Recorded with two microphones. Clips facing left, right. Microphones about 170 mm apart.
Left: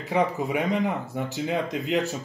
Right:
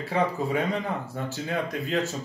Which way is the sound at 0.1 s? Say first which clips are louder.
Left 2 dB; 15° left (ahead or behind).